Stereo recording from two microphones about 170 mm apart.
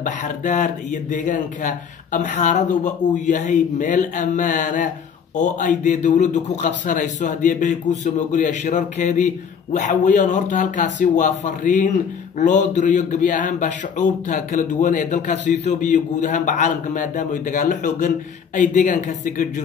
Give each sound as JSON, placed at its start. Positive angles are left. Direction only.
{"t": 0.0, "sound": "a man's voice", "side_deg": 50}